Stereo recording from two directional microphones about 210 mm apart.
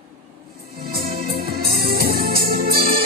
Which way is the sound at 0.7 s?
45° right (ahead or behind).